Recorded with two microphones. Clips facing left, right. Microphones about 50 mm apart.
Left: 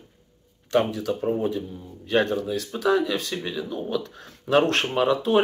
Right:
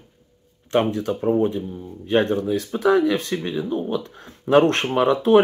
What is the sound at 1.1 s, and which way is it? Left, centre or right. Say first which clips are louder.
Speech: right 6 dB; right.